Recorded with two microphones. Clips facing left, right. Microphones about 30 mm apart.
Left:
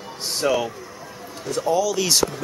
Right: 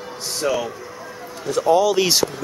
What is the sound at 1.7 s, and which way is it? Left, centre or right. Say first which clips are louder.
Speech: right 5 dB; right.